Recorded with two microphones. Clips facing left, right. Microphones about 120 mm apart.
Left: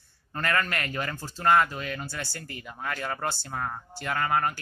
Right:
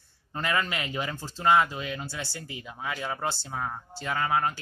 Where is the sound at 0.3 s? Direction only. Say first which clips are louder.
Left 1 dB; 10° right (ahead or behind).